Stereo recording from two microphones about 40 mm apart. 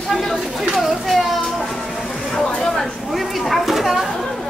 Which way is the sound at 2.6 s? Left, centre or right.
Centre.